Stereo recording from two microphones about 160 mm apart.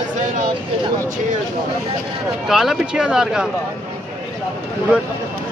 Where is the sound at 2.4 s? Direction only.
5° right (ahead or behind).